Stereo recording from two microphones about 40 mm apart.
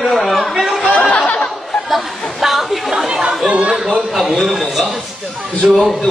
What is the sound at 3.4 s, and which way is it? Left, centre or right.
Chatter, right.